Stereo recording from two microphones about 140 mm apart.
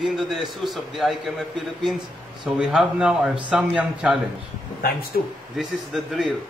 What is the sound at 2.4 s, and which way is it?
Speech, 5° right (ahead or behind).